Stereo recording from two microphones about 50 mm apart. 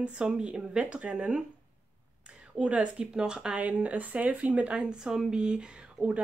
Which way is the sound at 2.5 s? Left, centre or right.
Right.